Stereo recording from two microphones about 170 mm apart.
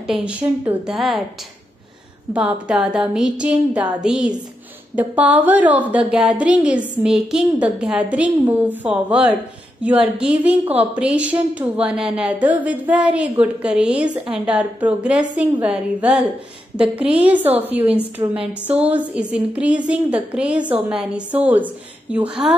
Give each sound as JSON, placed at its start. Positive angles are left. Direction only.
{"t": 0.0, "sound": "a woman's voice", "side_deg": -5}
{"t": 2.3, "sound": "a woman's voice", "side_deg": -5}
{"t": 10.6, "sound": "a woman's voice", "side_deg": -35}
{"t": 11.0, "sound": "a woman's voice", "side_deg": -5}
{"t": 18.2, "sound": "speech", "side_deg": -25}
{"t": 18.7, "sound": "a woman's voice", "side_deg": -10}